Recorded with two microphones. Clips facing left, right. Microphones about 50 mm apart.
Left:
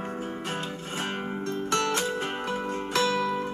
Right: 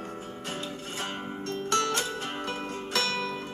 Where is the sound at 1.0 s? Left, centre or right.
Left.